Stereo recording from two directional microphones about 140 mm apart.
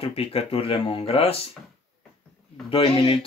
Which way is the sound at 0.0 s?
45° left (ahead or behind).